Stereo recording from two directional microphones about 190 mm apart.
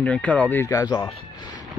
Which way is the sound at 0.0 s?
5° left (ahead or behind).